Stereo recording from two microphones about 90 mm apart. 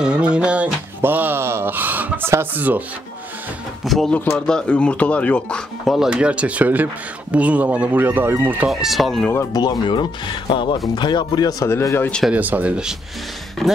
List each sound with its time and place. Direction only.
0.0 s music: 10° right (ahead or behind)
1.0 s a sound: 20° right (ahead or behind)
2.5 s speech: 20° right (ahead or behind)
3.8 s speech: centre (ahead or behind)
5.9 s speech: 10° right (ahead or behind); by 8.5 s 25° right (ahead or behind)
8.6 s speech: centre (ahead or behind)
9.5 s speech: 50° left (ahead or behind)
11.6 s speech: 30° left (ahead or behind)
12.3 s speech: 20° right (ahead or behind)